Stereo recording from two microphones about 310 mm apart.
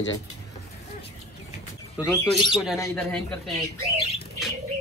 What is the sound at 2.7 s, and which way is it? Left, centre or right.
Speech, centre.